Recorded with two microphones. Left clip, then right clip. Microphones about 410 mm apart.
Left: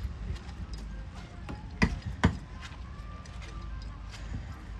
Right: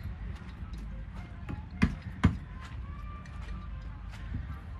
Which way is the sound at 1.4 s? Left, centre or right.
Centre.